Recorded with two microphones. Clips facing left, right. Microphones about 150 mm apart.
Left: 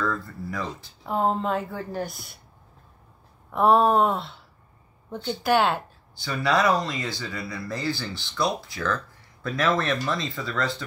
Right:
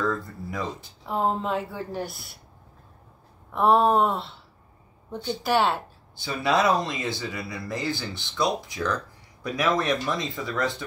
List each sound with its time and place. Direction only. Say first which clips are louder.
0.0 s a sound: right 1 dB; 20° right (ahead or behind)
1.0 s speech: left 1 dB; centre (ahead or behind)
3.5 s speech: left 1 dB; centre (ahead or behind)
5.4 s speech: left 1 dB; centre (ahead or behind)
6.2 s speech: even; 20° right (ahead or behind)